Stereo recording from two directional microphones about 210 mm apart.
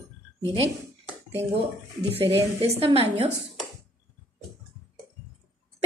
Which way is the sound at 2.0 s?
30° right (ahead or behind).